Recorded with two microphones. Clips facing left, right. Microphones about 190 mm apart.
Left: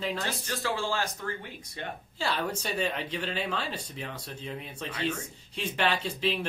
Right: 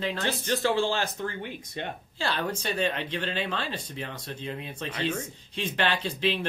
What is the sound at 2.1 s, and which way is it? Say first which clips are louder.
Speech: right 1 dB; 5° left (ahead or behind).